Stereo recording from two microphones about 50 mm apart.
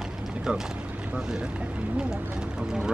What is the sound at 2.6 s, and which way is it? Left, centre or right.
Speech, centre.